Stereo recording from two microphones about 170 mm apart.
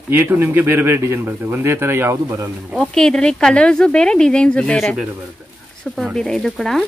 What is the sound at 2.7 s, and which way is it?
Speech, 5° left (ahead or behind).